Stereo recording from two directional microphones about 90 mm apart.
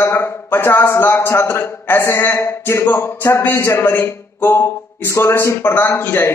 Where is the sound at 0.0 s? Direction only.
30° left (ahead or behind).